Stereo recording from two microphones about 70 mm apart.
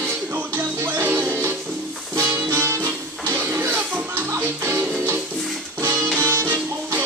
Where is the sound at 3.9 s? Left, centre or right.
Right.